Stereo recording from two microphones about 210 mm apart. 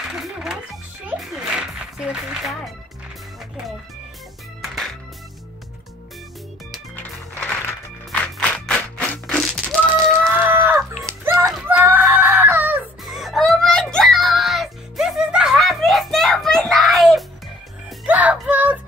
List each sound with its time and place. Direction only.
0.1 s speech: centre (ahead or behind)
1.0 s music: centre (ahead or behind)
6.7 s music: 5° left (ahead or behind)
10.3 s livestock: 10° right (ahead or behind)
11.1 s music: 15° right (ahead or behind)